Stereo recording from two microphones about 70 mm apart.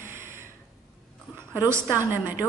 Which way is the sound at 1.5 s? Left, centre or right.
Right.